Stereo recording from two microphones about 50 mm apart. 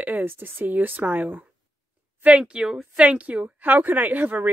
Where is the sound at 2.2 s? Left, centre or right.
Centre; by 4.4 s right.